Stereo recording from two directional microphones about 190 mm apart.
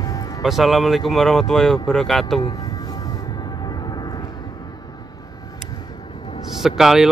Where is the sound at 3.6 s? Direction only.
20° left (ahead or behind).